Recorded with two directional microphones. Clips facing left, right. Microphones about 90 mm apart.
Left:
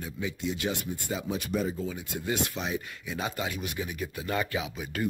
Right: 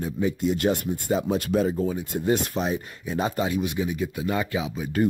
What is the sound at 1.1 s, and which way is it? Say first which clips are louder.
Speech: right 9 dB; 45° right (ahead or behind).